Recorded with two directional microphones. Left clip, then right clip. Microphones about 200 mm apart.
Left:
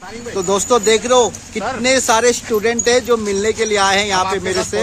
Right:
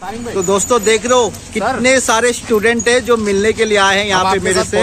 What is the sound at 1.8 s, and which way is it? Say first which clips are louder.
Speech: even; centre (ahead or behind).